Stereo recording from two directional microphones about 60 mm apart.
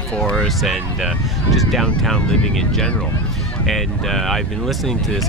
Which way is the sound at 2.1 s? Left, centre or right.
Centre.